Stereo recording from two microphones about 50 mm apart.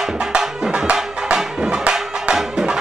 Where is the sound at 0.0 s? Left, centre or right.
Centre.